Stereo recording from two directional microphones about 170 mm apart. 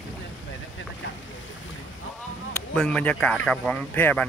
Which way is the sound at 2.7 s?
5° left (ahead or behind).